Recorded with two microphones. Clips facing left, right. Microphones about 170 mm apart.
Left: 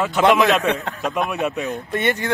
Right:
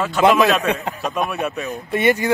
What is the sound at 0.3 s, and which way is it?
Speech, 20° left (ahead or behind).